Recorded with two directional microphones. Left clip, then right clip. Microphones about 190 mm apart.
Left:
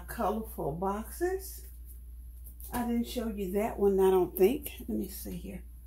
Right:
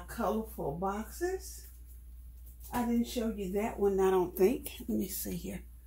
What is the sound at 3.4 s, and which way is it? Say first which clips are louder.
Speech: left 4 dB; 15° left (ahead or behind).